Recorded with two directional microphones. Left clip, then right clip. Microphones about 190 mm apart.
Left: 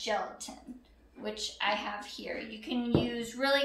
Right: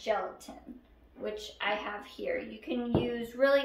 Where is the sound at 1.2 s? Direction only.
20° right (ahead or behind).